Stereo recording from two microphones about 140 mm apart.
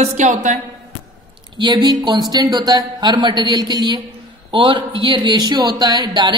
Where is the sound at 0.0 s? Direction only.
55° right (ahead or behind).